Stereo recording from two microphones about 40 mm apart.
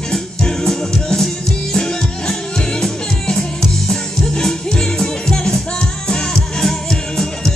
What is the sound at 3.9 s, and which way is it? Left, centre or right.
Music, centre.